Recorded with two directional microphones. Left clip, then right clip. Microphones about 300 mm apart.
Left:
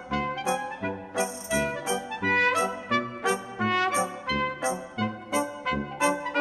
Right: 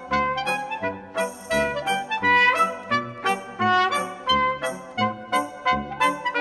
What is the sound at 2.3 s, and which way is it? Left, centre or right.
Music, centre.